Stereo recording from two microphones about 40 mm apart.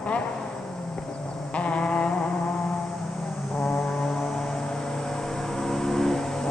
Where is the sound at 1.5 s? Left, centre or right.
Left.